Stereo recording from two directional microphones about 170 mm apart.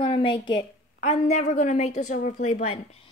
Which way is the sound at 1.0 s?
45° left (ahead or behind).